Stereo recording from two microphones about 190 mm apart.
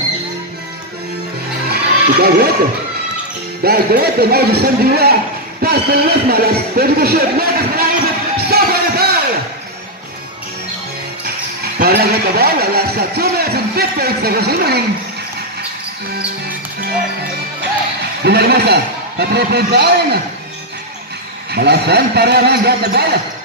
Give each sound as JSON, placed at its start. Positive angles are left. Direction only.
{"t": 1.7, "sound": "a sound", "side_deg": -55}
{"t": 3.6, "sound": "a man's voice", "side_deg": -55}
{"t": 8.4, "sound": "music", "side_deg": -55}
{"t": 11.2, "sound": "speech", "side_deg": -55}
{"t": 18.2, "sound": "a man's voice", "side_deg": -60}
{"t": 21.5, "sound": "a man's voice", "side_deg": -60}